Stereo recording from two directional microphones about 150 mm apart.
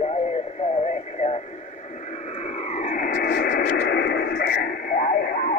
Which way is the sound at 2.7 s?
55° left (ahead or behind).